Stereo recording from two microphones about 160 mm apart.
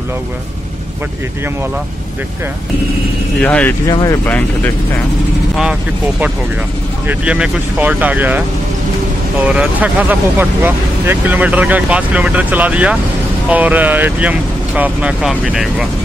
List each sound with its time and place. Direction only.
3.3 s speech: 10° left (ahead or behind)
3.8 s speech: 25° left (ahead or behind)
7.1 s speech: 5° right (ahead or behind)